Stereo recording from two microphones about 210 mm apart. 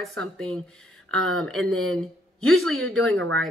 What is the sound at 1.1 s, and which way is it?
Speech, 80° right.